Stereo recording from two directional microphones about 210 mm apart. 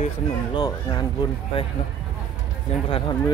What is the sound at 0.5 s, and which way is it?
Speech, 20° left (ahead or behind).